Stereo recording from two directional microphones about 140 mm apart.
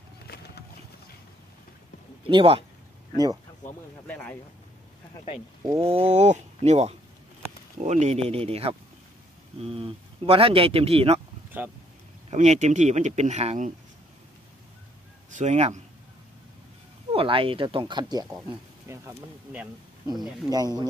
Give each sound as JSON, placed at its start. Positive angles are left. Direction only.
{"t": 2.2, "sound": "speech", "side_deg": -40}
{"t": 4.1, "sound": "speech", "side_deg": 10}
{"t": 5.8, "sound": "speech", "side_deg": -45}
{"t": 12.3, "sound": "speech", "side_deg": -55}
{"t": 15.3, "sound": "speech", "side_deg": -55}
{"t": 17.1, "sound": "speech", "side_deg": -40}
{"t": 18.9, "sound": "speech", "side_deg": -15}
{"t": 20.1, "sound": "speech", "side_deg": -30}